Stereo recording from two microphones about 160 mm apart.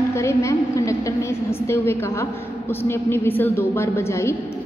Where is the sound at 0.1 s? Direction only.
15° left (ahead or behind).